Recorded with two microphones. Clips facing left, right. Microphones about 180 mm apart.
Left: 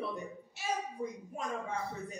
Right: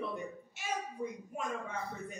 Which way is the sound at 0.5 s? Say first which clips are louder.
Left 3 dB; 35° left (ahead or behind).